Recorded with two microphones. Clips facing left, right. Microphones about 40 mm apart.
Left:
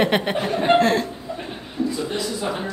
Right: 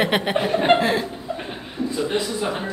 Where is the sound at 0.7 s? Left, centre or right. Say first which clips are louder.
Left 2 dB; centre.